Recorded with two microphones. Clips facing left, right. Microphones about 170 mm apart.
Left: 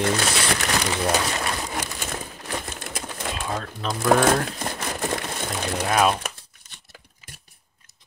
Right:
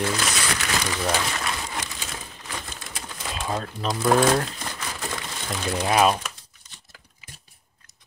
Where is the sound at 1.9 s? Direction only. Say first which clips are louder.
Left 5 dB; 45° left (ahead or behind).